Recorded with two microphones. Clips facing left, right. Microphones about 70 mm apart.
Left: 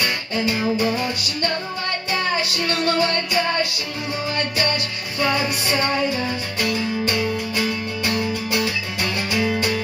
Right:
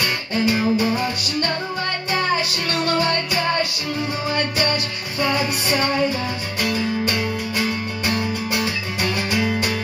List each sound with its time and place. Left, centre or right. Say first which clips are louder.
0.3 s music: right 4 dB; centre
2.7 s music: even; right
5.2 s music: even; centre
9.3 s music: left 3 dB; centre